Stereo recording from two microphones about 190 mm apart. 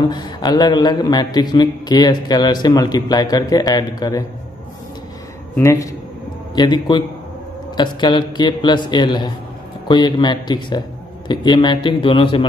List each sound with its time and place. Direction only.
0.1 s a man's voice: 20° left (ahead or behind)
5.6 s a man's voice: 15° left (ahead or behind)